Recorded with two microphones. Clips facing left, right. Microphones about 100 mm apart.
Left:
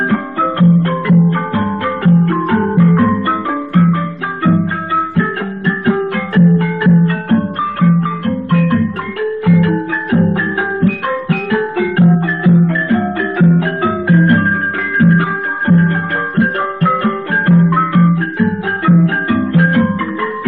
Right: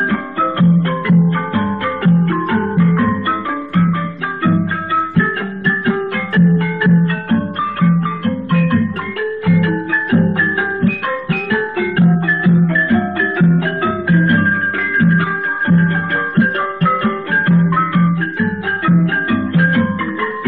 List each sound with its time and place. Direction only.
0.1 s music: 30° left (ahead or behind)